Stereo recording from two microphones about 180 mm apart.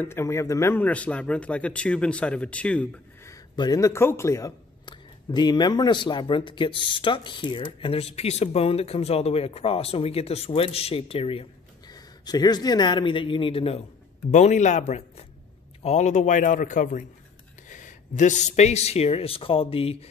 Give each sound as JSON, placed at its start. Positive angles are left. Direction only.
{"t": 0.0, "sound": "a man's voice", "side_deg": 15}
{"t": 3.5, "sound": "speech", "side_deg": 20}